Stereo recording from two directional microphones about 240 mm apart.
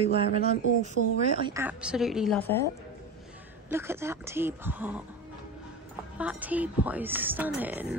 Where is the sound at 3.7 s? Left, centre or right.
Centre.